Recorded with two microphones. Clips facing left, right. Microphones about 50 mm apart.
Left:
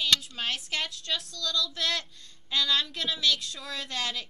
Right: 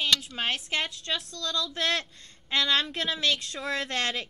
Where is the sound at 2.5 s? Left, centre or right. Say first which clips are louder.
Right 2 dB; right.